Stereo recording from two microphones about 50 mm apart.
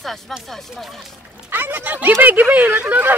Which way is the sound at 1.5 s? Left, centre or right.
Right.